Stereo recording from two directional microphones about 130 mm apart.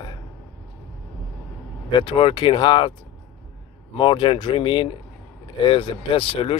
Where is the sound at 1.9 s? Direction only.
40° left (ahead or behind).